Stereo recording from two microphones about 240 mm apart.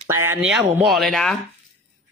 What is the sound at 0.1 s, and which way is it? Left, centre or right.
Speech, centre.